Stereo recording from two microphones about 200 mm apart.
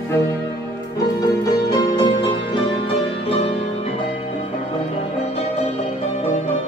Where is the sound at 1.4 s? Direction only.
20° left (ahead or behind).